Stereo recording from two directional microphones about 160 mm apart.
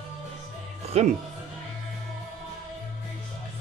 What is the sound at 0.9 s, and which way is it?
Speech, 40° right (ahead or behind).